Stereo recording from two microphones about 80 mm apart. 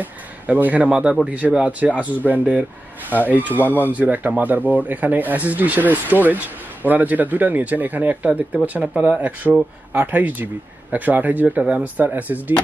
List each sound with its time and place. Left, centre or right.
0.0 s speech: right
3.6 s speech: left
3.9 s speech: centre